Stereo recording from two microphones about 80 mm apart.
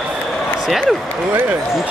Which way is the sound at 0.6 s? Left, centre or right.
Centre.